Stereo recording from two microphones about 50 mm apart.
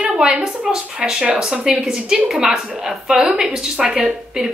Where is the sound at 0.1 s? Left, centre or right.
Centre.